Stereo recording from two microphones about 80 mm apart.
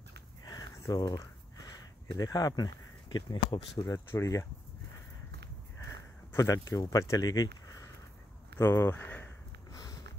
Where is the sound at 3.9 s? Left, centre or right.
Left.